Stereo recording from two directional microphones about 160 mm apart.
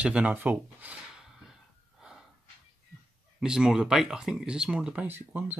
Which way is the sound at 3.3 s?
5° right (ahead or behind).